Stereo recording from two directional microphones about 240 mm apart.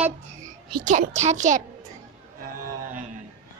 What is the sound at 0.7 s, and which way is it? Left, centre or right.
Speech, right.